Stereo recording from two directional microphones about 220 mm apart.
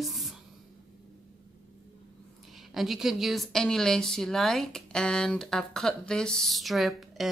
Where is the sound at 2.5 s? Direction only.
Centre (ahead or behind).